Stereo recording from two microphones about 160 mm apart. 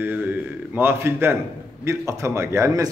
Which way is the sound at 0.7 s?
15° right (ahead or behind).